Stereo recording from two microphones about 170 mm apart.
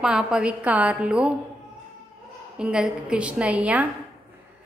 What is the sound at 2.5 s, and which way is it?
A woman's voice, 5° right (ahead or behind).